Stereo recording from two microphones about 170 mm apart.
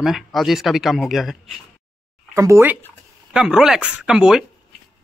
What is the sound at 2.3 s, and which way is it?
A man's voice, 15° right (ahead or behind).